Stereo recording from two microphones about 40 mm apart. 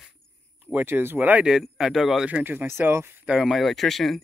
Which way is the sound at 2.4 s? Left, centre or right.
Right.